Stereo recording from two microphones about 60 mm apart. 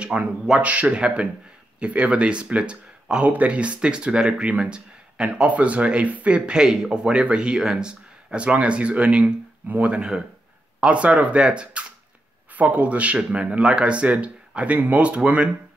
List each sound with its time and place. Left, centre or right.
0.1 s speech: centre